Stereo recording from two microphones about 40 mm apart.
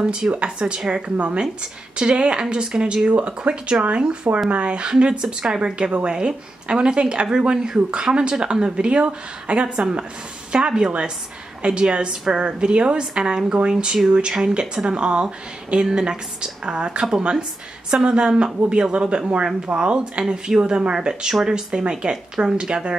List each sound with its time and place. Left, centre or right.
0.0 s speech: right
0.7 s a woman's voice: centre
21.1 s speech: centre